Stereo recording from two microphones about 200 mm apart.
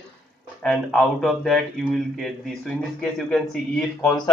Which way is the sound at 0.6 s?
5° left (ahead or behind).